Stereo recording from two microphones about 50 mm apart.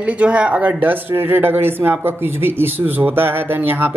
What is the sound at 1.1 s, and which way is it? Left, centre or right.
Speech, right.